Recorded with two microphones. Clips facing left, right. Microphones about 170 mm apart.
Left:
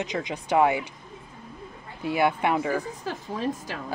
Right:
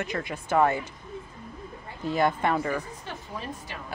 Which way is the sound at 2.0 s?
10° left (ahead or behind).